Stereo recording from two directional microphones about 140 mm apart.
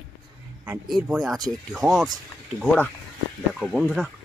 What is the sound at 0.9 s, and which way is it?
Speech, centre (ahead or behind).